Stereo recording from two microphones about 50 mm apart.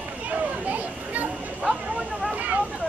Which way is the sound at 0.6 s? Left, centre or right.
Right.